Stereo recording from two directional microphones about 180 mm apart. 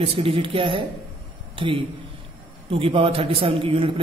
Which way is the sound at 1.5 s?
30° right (ahead or behind).